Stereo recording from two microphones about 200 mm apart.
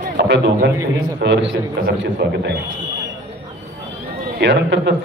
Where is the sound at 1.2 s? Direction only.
60° right (ahead or behind).